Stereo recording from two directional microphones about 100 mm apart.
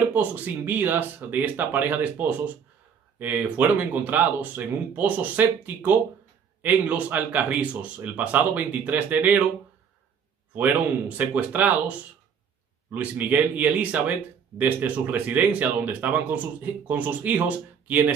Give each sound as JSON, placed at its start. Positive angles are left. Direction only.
{"t": 0.1, "sound": "speech", "side_deg": -15}
{"t": 10.5, "sound": "speech", "side_deg": -15}
{"t": 12.9, "sound": "speech", "side_deg": -15}